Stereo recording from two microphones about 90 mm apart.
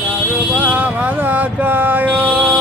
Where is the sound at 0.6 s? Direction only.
15° right (ahead or behind).